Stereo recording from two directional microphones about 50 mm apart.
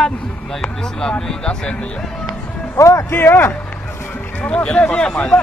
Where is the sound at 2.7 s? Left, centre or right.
Left.